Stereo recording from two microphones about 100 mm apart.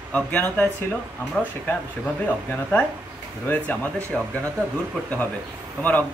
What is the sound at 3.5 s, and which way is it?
Speech, 15° left (ahead or behind).